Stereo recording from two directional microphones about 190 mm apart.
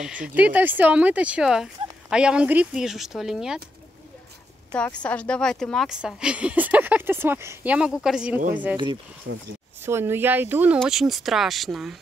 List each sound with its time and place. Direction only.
0.0 s speech: 5° right (ahead or behind)
4.7 s speech: 5° left (ahead or behind)
9.3 s speech: 90° right
9.8 s speech: 10° right (ahead or behind)